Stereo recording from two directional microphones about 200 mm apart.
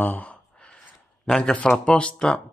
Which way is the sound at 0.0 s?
10° left (ahead or behind).